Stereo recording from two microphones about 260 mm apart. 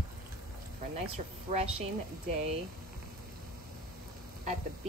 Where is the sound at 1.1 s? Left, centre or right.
Right.